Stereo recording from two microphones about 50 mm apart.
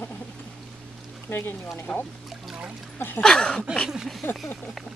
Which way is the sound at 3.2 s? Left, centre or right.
Centre.